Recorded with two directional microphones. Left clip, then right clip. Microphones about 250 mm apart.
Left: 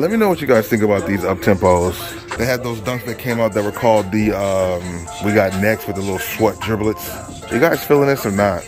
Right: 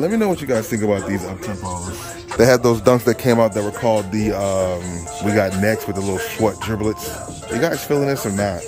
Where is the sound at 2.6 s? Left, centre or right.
Right.